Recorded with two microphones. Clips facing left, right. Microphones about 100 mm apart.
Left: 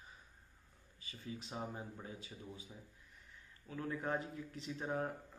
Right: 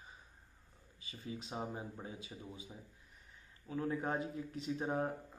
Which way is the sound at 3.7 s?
20° right (ahead or behind).